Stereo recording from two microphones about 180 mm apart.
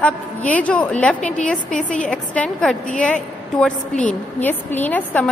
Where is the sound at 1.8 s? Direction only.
45° left (ahead or behind).